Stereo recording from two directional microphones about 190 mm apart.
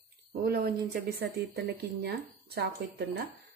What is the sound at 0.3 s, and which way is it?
Speech, 55° right (ahead or behind).